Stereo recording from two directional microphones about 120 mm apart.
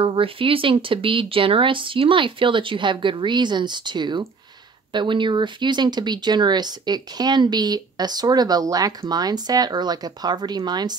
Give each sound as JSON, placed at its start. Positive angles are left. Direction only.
{"t": 0.0, "sound": "speech", "side_deg": -50}